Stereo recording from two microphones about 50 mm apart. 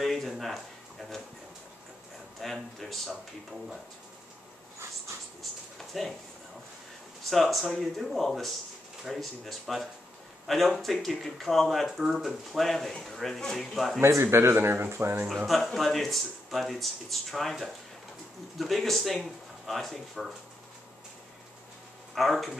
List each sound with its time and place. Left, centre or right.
0.0 s a sound: centre
2.4 s speech: centre
5.8 s a sound: centre
7.2 s speech: centre
13.7 s speech: centre
14.2 s speech: right
15.2 s speech: centre
22.1 s speech: centre